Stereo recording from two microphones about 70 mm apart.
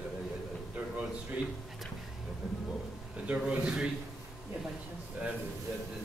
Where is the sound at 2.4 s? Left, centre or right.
Centre.